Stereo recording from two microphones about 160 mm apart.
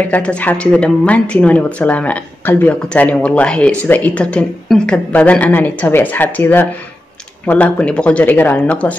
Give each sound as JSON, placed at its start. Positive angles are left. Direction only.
{"t": 0.0, "sound": "speech", "side_deg": 10}